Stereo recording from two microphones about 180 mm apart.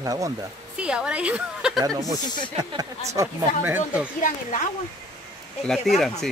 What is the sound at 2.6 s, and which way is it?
Speech, 20° right (ahead or behind).